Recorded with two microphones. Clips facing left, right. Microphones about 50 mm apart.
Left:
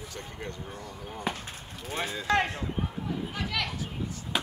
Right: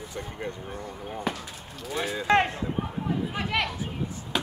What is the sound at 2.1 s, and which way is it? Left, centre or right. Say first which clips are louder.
Speech: right 4 dB; right.